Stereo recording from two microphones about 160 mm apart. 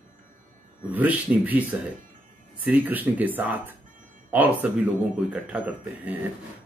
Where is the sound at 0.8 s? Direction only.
10° right (ahead or behind).